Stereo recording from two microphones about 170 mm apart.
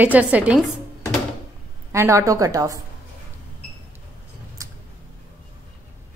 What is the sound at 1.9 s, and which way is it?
Speech, 15° right (ahead or behind).